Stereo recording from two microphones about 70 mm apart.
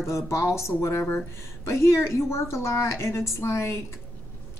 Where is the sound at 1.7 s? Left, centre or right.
Left.